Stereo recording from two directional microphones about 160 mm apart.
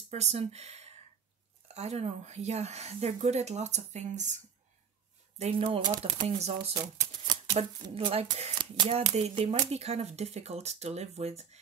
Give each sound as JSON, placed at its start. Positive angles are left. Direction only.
{"t": 0.1, "sound": "a woman's voice", "side_deg": -40}
{"t": 5.4, "sound": "speech", "side_deg": -35}
{"t": 7.0, "sound": "typewriter", "side_deg": -25}
{"t": 7.9, "sound": "speech", "side_deg": -40}